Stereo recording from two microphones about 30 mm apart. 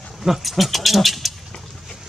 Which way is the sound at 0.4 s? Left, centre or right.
Centre.